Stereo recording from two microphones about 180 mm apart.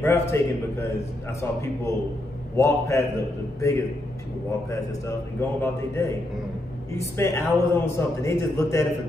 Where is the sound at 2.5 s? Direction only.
15° left (ahead or behind).